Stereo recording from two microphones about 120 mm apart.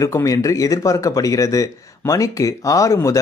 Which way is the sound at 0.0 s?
30° left (ahead or behind).